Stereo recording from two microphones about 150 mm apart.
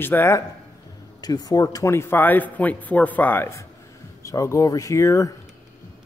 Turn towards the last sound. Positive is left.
turn(degrees=20)  # may be behind; listen again after turning